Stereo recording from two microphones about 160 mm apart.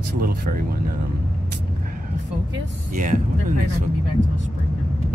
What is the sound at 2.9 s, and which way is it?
Speech, 55° right (ahead or behind).